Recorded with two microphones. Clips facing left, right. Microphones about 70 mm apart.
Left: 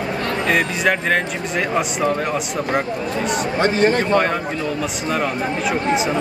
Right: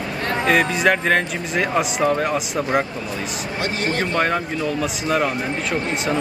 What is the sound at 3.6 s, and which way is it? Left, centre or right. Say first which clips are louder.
Speech: left 6 dB; left.